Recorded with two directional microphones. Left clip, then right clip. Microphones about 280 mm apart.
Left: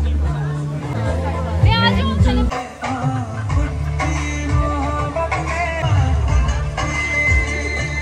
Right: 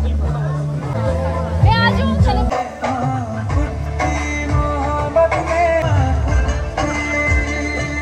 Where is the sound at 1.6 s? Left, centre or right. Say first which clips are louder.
Right 1 dB; right.